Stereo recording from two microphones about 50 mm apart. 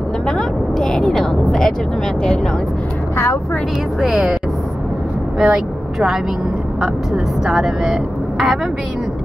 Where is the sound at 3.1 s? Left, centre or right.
Left.